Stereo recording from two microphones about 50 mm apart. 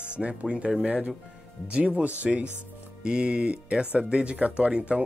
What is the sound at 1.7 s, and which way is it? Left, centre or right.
Speech, right.